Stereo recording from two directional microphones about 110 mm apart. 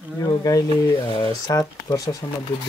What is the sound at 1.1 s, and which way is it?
Speech, 35° left (ahead or behind).